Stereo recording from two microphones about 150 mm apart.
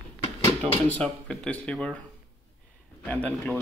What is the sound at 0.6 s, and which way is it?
Speech, 10° left (ahead or behind).